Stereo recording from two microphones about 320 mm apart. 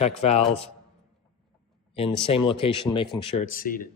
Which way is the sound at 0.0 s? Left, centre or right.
Centre.